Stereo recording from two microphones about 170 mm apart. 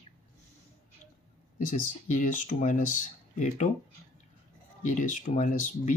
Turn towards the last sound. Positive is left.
turn(degrees=50)  # may be behind; listen again after turning